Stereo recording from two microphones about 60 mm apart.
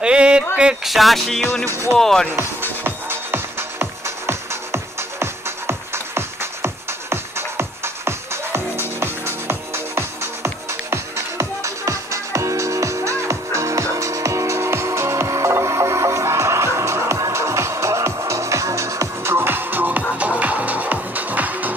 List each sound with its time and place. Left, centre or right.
0.0 s a sound: centre
0.8 s music: centre
2.0 s speech: centre
2.8 s music: right
19.3 s music: right